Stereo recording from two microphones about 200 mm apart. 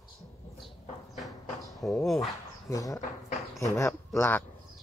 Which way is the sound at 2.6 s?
15° left (ahead or behind).